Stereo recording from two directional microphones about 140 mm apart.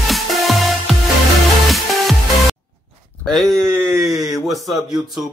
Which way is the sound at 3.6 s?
20° right (ahead or behind).